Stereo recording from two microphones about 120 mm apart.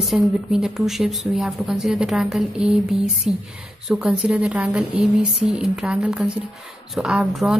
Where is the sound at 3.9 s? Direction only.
10° right (ahead or behind).